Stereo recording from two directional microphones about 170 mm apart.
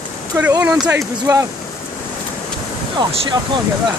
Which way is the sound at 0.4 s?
10° right (ahead or behind).